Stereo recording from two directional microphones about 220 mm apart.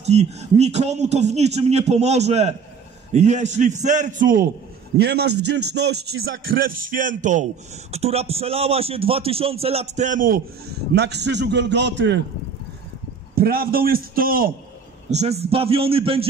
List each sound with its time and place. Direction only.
0.0 s a man's voice: 30° right (ahead or behind)
10.9 s a man's voice: 50° right (ahead or behind)
13.3 s a man's voice: 45° right (ahead or behind)
15.0 s a man's voice: 30° right (ahead or behind)